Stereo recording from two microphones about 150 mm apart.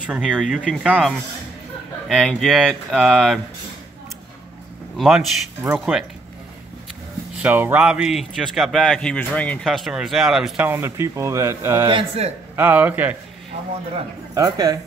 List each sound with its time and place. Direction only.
0.0 s speech: 5° right (ahead or behind)
4.9 s speech: centre (ahead or behind)
5.6 s speech: 15° right (ahead or behind)
7.4 s speech: 10° right (ahead or behind)
10.7 s speech: 20° right (ahead or behind)
11.9 s a man's voice: 35° right (ahead or behind)
12.5 s speech: 15° right (ahead or behind)
14.3 s speech: 25° right (ahead or behind)